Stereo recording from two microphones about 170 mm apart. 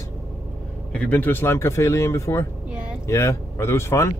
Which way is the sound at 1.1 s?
10° left (ahead or behind).